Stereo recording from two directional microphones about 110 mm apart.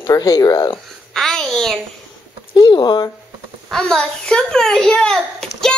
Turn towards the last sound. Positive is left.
turn(degrees=5)  # may be behind; listen again after turning